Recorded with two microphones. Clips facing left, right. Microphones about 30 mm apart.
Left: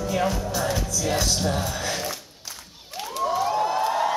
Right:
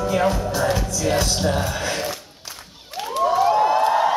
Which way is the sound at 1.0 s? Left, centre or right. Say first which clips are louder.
Right 3 dB; centre.